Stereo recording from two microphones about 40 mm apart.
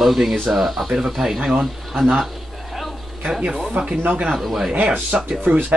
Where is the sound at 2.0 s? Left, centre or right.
Centre.